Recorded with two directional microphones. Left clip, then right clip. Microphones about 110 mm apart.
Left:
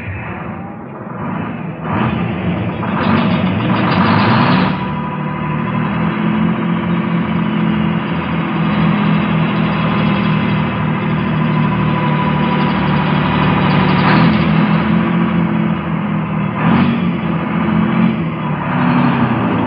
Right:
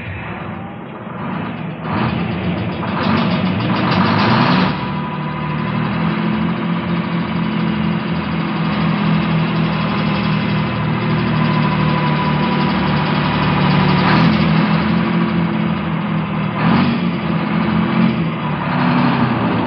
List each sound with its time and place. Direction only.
3.0 s vehicle: 25° left (ahead or behind)
6.0 s vehicle: 25° left (ahead or behind)
7.5 s vehicle: 30° left (ahead or behind)
16.6 s vehicle: 25° left (ahead or behind)